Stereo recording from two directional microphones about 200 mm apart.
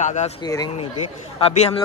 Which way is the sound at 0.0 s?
35° left (ahead or behind).